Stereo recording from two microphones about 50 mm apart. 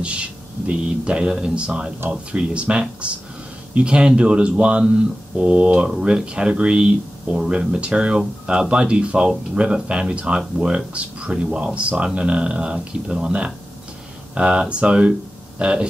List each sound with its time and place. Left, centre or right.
0.0 s speech: right